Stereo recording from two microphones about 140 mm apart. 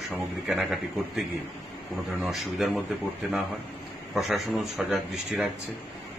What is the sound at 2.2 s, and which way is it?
Speech, centre (ahead or behind).